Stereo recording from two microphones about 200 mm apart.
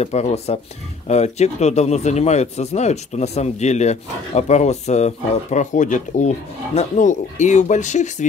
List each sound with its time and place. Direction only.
0.0 s speech: 35° left (ahead or behind)